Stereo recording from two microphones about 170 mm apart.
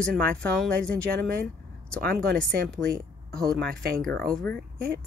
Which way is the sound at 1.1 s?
65° right (ahead or behind).